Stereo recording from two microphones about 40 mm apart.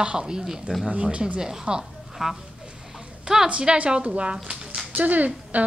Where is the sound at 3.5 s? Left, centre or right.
Right.